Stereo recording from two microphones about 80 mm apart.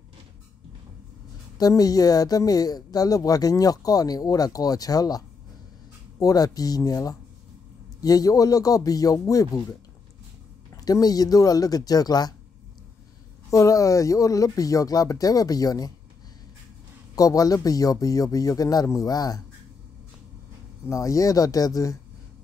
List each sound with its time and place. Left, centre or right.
1.6 s speech: left
13.5 s speech: left
17.1 s speech: left
20.9 s speech: left